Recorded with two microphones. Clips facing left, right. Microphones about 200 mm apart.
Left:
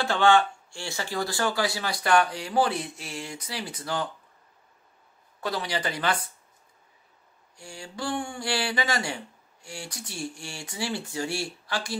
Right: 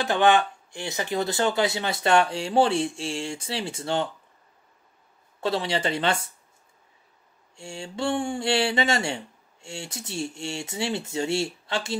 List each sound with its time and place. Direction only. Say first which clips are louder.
0.0 s speech: right 1 dB; 20° right (ahead or behind)
5.4 s speech: right 4 dB; 25° right (ahead or behind)
7.5 s speech: right 5 dB; 25° right (ahead or behind)